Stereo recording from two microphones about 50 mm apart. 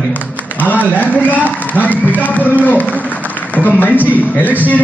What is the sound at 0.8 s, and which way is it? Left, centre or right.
A man's voice, left.